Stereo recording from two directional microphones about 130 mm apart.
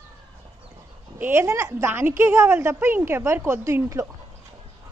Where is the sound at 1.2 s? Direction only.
20° right (ahead or behind).